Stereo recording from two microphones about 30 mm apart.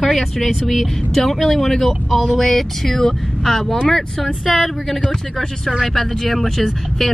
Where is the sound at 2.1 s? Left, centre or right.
Centre.